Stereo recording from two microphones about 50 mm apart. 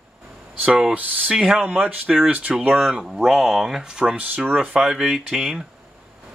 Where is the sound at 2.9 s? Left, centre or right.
Centre.